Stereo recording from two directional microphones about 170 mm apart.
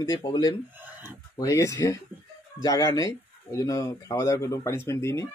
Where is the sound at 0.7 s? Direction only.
10° right (ahead or behind).